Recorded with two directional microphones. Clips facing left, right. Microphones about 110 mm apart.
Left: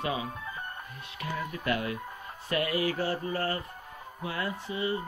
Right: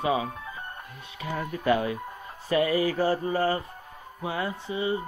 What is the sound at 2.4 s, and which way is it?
Speech, 35° right (ahead or behind).